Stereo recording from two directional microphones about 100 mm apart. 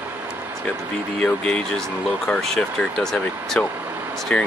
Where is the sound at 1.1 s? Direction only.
10° left (ahead or behind).